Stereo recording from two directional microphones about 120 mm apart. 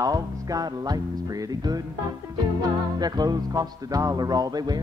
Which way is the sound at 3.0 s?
35° right (ahead or behind).